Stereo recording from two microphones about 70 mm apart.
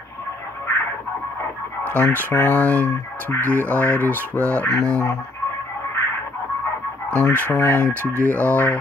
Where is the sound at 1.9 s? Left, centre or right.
Left.